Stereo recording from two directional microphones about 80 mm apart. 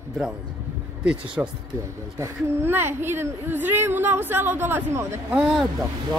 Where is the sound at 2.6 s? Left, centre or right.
Right.